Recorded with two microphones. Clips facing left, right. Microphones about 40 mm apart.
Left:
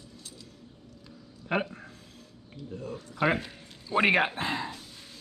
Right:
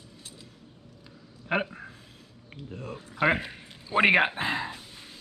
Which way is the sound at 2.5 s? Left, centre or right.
Right.